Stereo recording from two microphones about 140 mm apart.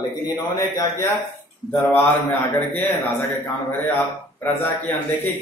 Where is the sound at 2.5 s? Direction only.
10° left (ahead or behind).